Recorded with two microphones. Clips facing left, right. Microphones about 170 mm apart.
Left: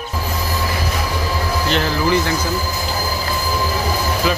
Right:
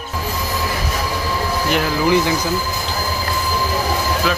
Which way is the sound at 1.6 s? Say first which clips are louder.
Right 1 dB; 10° right (ahead or behind).